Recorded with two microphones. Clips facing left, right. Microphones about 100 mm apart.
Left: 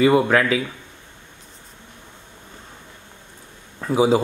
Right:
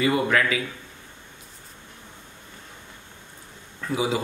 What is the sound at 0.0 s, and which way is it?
Speech, 30° left (ahead or behind).